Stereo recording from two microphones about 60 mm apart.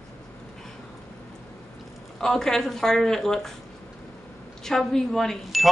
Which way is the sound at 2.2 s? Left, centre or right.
Centre.